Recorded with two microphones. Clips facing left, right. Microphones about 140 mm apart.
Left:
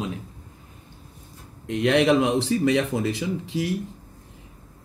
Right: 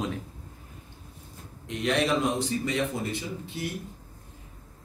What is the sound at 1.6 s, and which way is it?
Speech, 65° left (ahead or behind).